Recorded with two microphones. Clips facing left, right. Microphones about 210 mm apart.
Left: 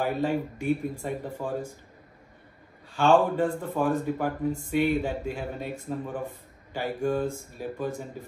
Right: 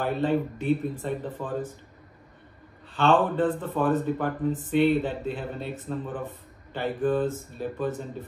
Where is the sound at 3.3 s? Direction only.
10° left (ahead or behind).